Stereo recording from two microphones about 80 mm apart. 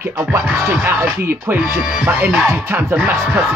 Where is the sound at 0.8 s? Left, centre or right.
Right.